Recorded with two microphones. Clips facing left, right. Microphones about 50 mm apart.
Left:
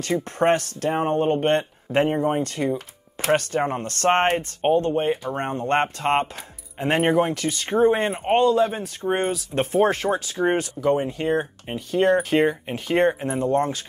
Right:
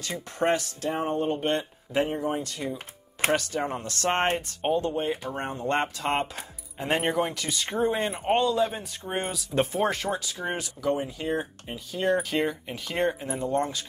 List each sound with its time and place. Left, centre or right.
0.0 s speech: left
6.9 s speech: left
10.6 s speech: left